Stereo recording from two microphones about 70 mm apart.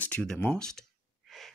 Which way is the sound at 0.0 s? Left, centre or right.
Centre.